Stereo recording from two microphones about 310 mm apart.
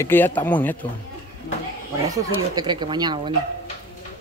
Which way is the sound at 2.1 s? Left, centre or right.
Centre.